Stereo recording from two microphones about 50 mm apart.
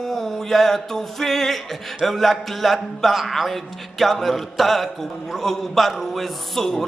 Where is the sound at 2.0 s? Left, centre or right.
Centre.